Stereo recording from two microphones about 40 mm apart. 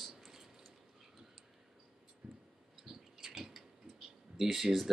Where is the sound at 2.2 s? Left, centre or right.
Right.